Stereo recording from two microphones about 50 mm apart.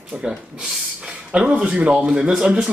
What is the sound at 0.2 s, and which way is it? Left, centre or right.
Speech, centre.